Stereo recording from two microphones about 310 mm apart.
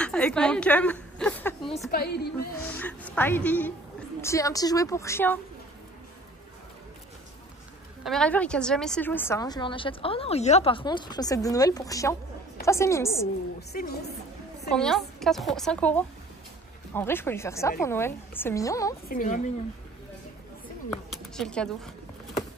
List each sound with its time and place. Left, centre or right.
0.0 s a woman's voice: centre
1.9 s a woman's voice: left
2.6 s a woman's voice: centre
8.0 s a woman's voice: centre
13.6 s a woman's voice: left
14.7 s a woman's voice: centre
19.0 s speech: left
20.9 s speech: centre